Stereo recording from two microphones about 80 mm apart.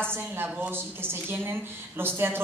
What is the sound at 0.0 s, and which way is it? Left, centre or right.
A woman's voice, right.